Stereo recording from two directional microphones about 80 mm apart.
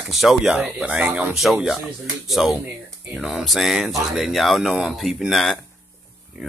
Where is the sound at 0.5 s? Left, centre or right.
Centre.